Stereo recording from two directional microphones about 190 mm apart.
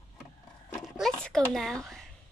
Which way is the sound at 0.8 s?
Centre (ahead or behind).